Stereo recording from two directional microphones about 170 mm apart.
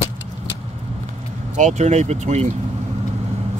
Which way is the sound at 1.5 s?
45° right (ahead or behind).